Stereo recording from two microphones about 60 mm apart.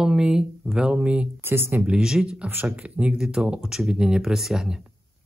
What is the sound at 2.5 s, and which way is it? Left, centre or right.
Speech, right.